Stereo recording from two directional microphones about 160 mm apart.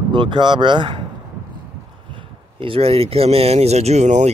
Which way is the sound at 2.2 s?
35° right (ahead or behind).